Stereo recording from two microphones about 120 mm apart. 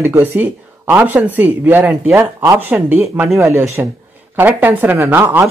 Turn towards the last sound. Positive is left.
turn(degrees=-15)  # may be behind; listen again after turning